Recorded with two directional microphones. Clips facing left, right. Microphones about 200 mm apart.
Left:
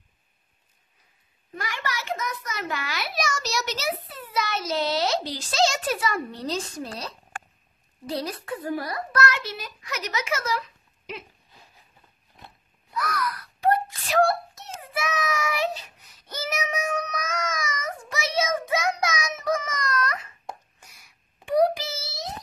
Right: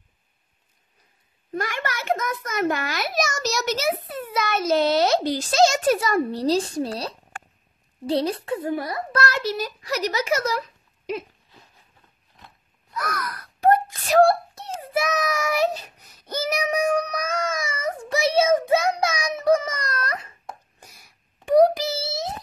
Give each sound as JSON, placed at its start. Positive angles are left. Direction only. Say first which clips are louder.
{"t": 1.5, "sound": "a child's voice", "louder": "right 5 dB", "side_deg": -50}
{"t": 8.1, "sound": "a child's voice", "louder": "right 7 dB", "side_deg": -30}
{"t": 12.9, "sound": "wail", "louder": "left 1 dB", "side_deg": -45}
{"t": 14.2, "sound": "child singing", "louder": "right 5 dB", "side_deg": -30}
{"t": 21.5, "sound": "a sound", "louder": "right 5 dB", "side_deg": -40}